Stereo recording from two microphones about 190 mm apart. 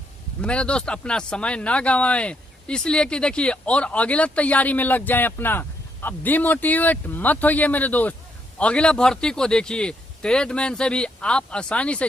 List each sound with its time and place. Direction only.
0.4 s speech: 5° left (ahead or behind)